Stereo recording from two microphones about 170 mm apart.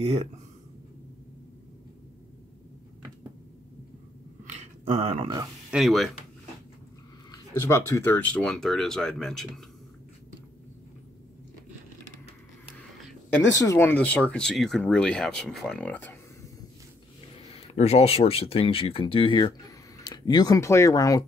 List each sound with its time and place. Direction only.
0.0 s speech: 35° right (ahead or behind)
4.5 s a sound: 40° right (ahead or behind)
5.7 s speech: centre (ahead or behind)
7.2 s speech: 15° left (ahead or behind)
13.5 s speech: 15° left (ahead or behind)
17.7 s speech: 35° left (ahead or behind); by 21.3 s 20° left (ahead or behind)